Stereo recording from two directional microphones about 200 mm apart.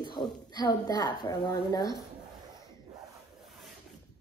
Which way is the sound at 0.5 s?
20° left (ahead or behind).